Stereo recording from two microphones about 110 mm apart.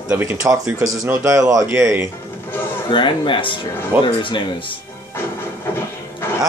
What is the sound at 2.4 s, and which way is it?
Music, 20° left (ahead or behind).